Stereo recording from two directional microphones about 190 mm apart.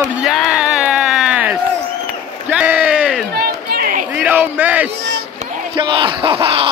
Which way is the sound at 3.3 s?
55° right (ahead or behind).